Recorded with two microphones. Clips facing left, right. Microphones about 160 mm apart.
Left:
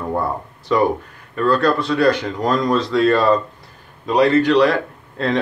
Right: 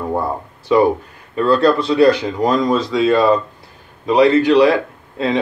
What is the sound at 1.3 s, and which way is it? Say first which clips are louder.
Speech: right 3 dB; 20° right (ahead or behind).